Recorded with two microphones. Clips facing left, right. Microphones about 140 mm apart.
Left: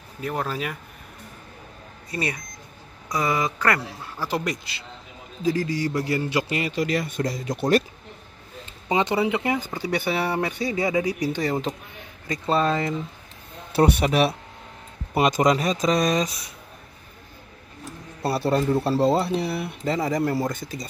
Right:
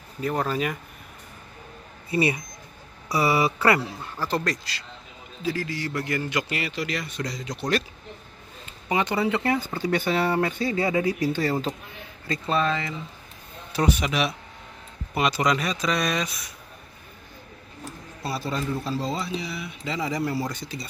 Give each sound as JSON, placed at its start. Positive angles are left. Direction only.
{"t": 0.2, "sound": "speech", "side_deg": 5}
{"t": 2.0, "sound": "speech", "side_deg": -10}
{"t": 4.0, "sound": "speech", "side_deg": 10}
{"t": 5.4, "sound": "a man's voice", "side_deg": 40}
{"t": 6.7, "sound": "speech", "side_deg": 45}
{"t": 8.8, "sound": "speech", "side_deg": 20}
{"t": 12.4, "sound": "a man's voice", "side_deg": 35}
{"t": 14.0, "sound": "a man's voice", "side_deg": 35}
{"t": 18.2, "sound": "speech", "side_deg": 60}